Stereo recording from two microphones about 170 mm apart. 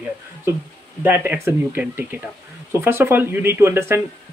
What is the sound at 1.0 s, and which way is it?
Speech, 10° right (ahead or behind).